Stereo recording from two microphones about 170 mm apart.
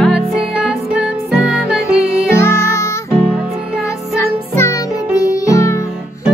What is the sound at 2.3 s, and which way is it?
Music, 15° left (ahead or behind).